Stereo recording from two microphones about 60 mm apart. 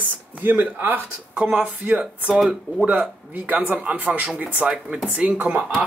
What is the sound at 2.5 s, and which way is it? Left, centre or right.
Speech, right.